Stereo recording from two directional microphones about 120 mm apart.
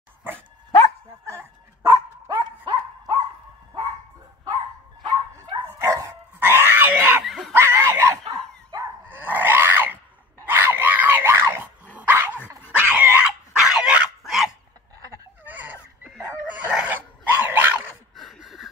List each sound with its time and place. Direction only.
1.2 s dog: 25° right (ahead or behind)
2.2 s dog: 40° right (ahead or behind)
5.0 s dog: 35° right (ahead or behind)
5.8 s dog: 25° right (ahead or behind)
6.6 s screaming: 15° right (ahead or behind)
7.2 s screaming: centre (ahead or behind)
7.5 s dog: 20° right (ahead or behind)
9.2 s a sound: 15° right (ahead or behind)
10.4 s dog: 15° right (ahead or behind)
15.4 s a sound: 15° right (ahead or behind)
16.4 s dog: 10° right (ahead or behind)
18.1 s a sound: centre (ahead or behind)